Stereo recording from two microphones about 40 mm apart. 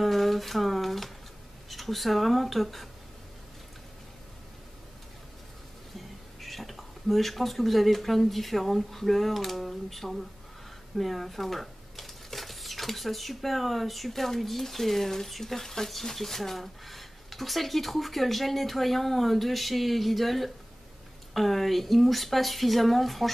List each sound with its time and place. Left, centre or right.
0.0 s a sound: centre
1.7 s speech: centre
5.9 s speech: centre